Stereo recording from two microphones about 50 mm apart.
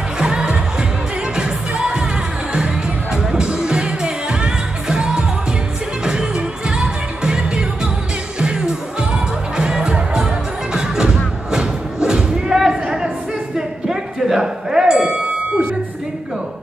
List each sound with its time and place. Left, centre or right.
0.2 s music: centre
1.8 s music: centre
3.2 s music: centre
6.7 s music: centre
11.5 s a sound: centre
13.6 s music: centre